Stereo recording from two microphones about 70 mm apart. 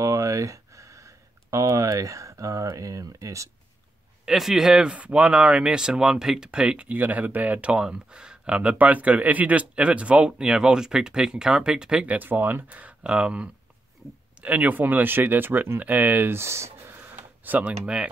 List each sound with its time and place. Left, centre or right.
0.0 s a sound: right
4.3 s speech: centre
12.2 s speech: right